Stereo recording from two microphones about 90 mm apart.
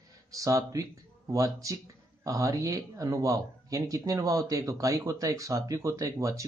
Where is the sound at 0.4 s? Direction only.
40° right (ahead or behind).